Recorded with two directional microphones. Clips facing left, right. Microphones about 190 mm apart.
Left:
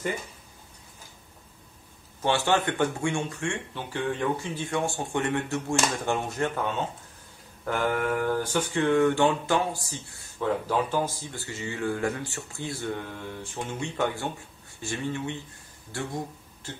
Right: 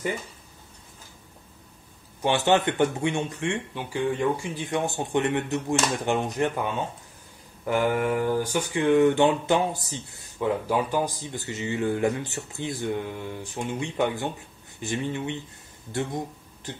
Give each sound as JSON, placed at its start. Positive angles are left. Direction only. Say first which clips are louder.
{"t": 2.2, "sound": "speech", "louder": "right 3 dB", "side_deg": -20}
{"t": 7.6, "sound": "speech", "louder": "right 3 dB", "side_deg": -15}